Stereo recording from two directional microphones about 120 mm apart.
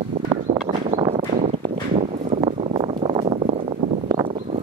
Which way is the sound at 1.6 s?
75° right (ahead or behind).